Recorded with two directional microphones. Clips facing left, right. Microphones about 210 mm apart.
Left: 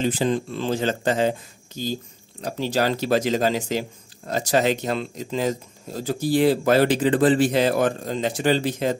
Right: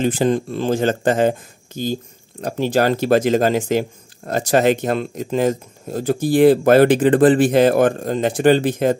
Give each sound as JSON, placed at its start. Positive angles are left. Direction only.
{"t": 0.0, "sound": "speech", "side_deg": -50}